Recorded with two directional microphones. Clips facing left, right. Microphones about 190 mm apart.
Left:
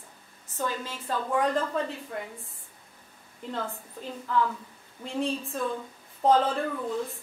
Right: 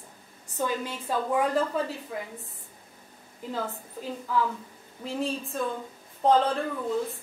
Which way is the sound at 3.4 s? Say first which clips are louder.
Right 1 dB; 5° right (ahead or behind).